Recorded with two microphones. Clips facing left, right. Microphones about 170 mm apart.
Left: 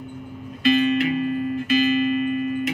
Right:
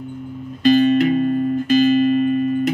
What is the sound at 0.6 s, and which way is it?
Music, 40° right (ahead or behind).